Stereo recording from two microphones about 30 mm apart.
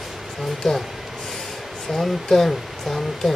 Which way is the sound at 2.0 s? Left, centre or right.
Centre.